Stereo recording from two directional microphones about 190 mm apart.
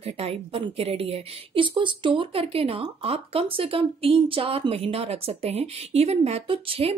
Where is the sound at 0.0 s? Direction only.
30° right (ahead or behind).